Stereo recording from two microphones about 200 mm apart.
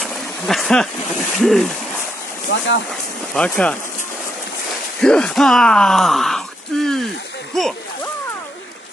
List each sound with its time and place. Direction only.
0.0 s speech: centre (ahead or behind)
2.5 s speech: 65° left (ahead or behind)
3.3 s speech: 5° left (ahead or behind)
5.0 s speech: 5° left (ahead or behind)